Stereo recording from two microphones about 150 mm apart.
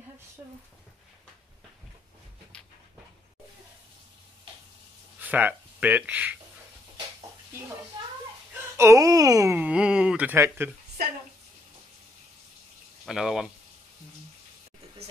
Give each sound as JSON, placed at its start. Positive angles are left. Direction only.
{"t": 5.2, "sound": "speech", "side_deg": -10}
{"t": 8.7, "sound": "speech", "side_deg": -20}
{"t": 9.6, "sound": "speech", "side_deg": -5}
{"t": 13.0, "sound": "speech", "side_deg": -5}